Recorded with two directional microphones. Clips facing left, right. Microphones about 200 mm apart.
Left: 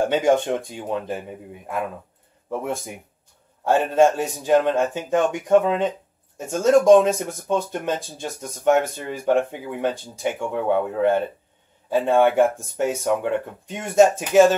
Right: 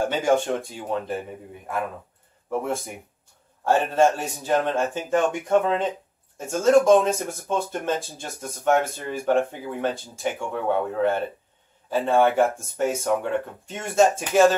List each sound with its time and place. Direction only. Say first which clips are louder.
0.2 s speech: left 2 dB; 15° left (ahead or behind)
3.6 s speech: left 2 dB; 15° left (ahead or behind)